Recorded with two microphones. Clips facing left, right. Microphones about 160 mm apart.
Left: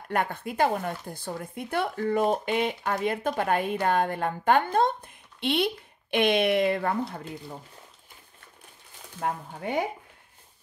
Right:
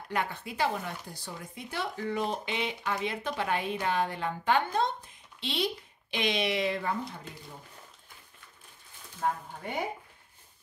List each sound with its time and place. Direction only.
0.1 s a woman's voice: 55° left (ahead or behind)